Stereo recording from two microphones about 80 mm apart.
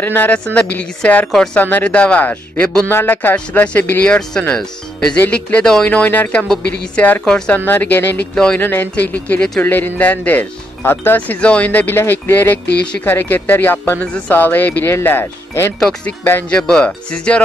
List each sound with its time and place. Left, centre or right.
0.0 s speech: left
1.3 s speech: centre
1.6 s speech: left
2.9 s speech: left
4.3 s speech: centre
5.9 s speech: left
7.2 s speech: centre
7.5 s speech: left
15.8 s speech: centre